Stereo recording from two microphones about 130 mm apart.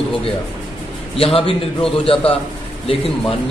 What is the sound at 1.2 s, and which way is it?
A man's voice, 45° left (ahead or behind).